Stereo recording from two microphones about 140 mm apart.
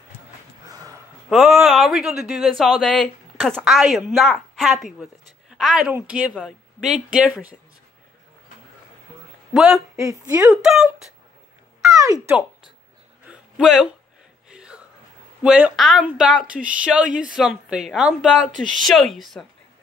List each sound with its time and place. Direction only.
0.7 s a sound: 25° right (ahead or behind)
1.3 s speech: 5° right (ahead or behind)
9.5 s speech: 5° right (ahead or behind)
9.9 s a woman's voice: 20° right (ahead or behind)
10.5 s speech: 5° right (ahead or behind)
11.9 s speech: 25° right (ahead or behind)
13.2 s a sound: 5° right (ahead or behind)
15.4 s speech: 5° right (ahead or behind)